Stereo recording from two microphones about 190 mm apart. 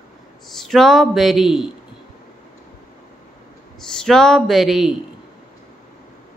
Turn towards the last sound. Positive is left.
turn(degrees=0)  # may be behind; listen again after turning